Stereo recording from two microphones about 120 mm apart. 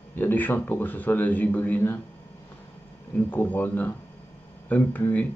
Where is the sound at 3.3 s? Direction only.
15° left (ahead or behind).